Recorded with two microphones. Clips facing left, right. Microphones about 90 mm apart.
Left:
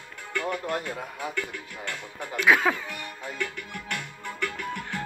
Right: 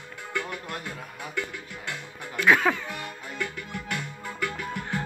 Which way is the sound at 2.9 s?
10° right (ahead or behind).